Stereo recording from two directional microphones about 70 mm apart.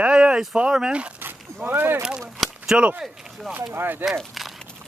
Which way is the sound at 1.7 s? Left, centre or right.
Right.